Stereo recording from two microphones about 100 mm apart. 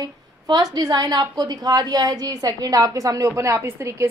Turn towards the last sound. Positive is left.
turn(degrees=-30)  # may be behind; listen again after turning